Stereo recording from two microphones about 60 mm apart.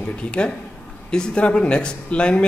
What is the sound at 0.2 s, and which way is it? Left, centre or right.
Speech, centre.